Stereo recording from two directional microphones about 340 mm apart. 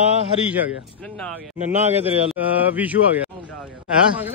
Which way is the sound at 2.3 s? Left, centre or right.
Centre.